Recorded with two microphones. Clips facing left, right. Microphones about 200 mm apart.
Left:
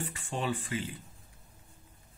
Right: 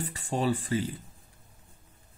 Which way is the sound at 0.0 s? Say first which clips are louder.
Right 6 dB; 40° right (ahead or behind).